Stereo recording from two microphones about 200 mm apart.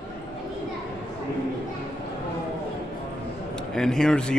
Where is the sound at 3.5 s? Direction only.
5° left (ahead or behind).